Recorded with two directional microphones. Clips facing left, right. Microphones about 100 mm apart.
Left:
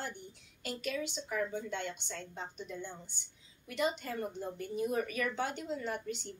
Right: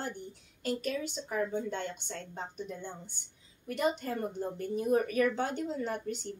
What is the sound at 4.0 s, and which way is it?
A woman's voice, 45° right (ahead or behind).